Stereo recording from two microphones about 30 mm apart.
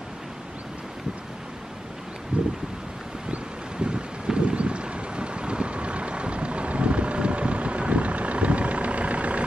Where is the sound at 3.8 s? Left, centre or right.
Right.